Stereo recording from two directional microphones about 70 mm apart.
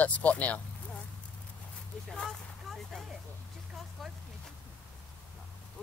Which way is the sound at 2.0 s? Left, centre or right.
Centre.